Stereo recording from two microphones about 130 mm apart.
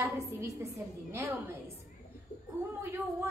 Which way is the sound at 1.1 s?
20° right (ahead or behind).